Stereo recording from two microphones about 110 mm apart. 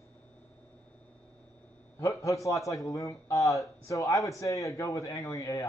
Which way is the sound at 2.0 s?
30° left (ahead or behind).